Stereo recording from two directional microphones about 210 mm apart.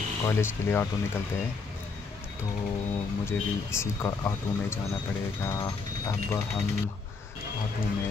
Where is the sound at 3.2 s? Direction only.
10° left (ahead or behind).